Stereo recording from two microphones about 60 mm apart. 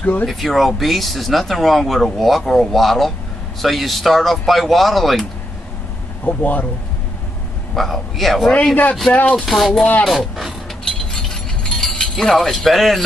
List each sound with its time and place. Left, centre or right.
0.0 s speech: left
0.3 s speech: centre
6.2 s speech: left
7.7 s speech: centre
9.1 s speech: left
9.5 s speech: centre
10.9 s chink: centre